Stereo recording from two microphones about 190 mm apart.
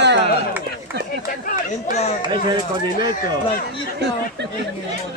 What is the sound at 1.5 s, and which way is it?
Speech, 35° left (ahead or behind).